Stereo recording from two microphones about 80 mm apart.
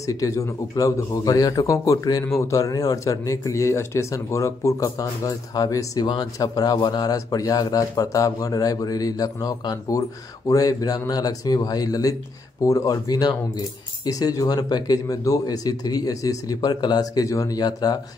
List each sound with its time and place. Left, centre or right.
0.0 s a man's voice: left
6.0 s a man's voice: left
14.0 s a man's voice: left
16.6 s speech: left